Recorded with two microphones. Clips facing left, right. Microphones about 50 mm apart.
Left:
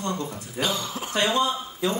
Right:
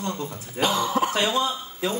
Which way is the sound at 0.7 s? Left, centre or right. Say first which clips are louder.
Right 7 dB; right.